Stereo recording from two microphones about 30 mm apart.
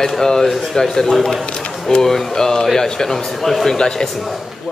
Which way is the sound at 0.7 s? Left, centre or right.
Centre.